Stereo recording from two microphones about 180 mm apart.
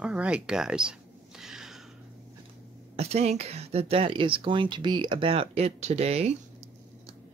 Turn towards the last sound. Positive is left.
turn(degrees=-35)  # may be behind; listen again after turning